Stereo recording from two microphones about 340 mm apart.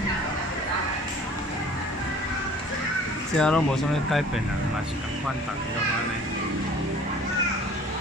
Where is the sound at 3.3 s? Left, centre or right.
Centre.